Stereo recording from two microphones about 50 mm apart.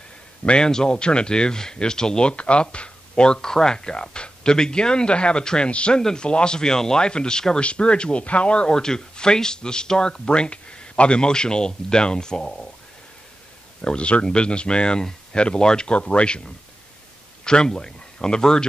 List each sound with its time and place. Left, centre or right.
0.5 s speech: centre
13.7 s speech: left